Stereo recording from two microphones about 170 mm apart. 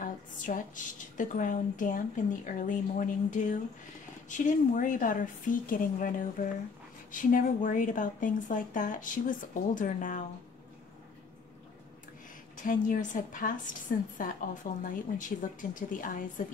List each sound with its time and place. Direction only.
0.0 s a woman's voice: 50° left (ahead or behind)
12.6 s a woman's voice: 50° left (ahead or behind)